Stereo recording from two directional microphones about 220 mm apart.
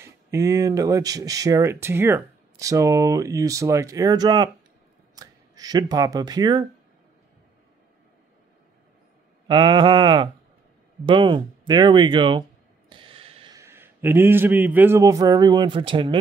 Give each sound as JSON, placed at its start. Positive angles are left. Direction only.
{"t": 0.0, "sound": "speech", "side_deg": -15}
{"t": 9.5, "sound": "a man's voice", "side_deg": -20}